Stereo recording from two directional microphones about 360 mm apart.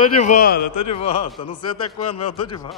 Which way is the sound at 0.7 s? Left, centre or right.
Left.